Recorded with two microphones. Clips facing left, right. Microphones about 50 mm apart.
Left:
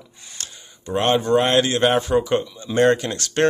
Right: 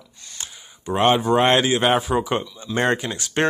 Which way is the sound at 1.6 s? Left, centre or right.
Centre.